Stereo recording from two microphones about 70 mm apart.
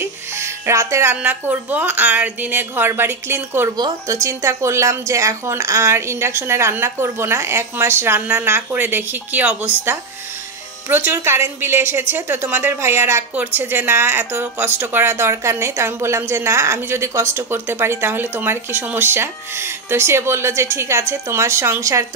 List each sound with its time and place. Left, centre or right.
0.0 s music: right
1.1 s a woman's voice: right
4.1 s a woman's voice: right
10.9 s speech: right
12.8 s speech: right
13.3 s speech: right